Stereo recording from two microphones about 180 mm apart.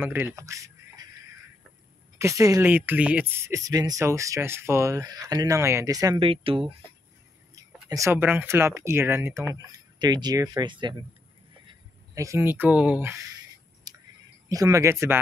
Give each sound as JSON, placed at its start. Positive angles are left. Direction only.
{"t": 0.0, "sound": "speech", "side_deg": -10}
{"t": 2.1, "sound": "speech", "side_deg": -15}
{"t": 6.1, "sound": "speech", "side_deg": -30}
{"t": 7.5, "sound": "speech", "side_deg": -15}
{"t": 12.2, "sound": "speech", "side_deg": -15}
{"t": 13.9, "sound": "a sound", "side_deg": -20}
{"t": 14.5, "sound": "speech", "side_deg": -20}